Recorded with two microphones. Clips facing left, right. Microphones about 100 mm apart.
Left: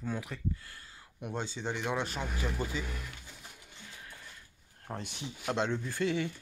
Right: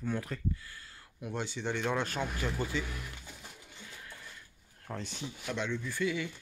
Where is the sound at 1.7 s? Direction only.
5° left (ahead or behind).